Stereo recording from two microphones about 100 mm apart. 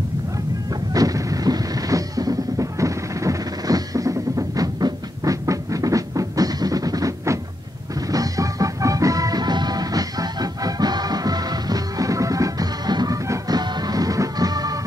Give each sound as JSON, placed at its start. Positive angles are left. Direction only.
{"t": 0.9, "sound": "music", "side_deg": -35}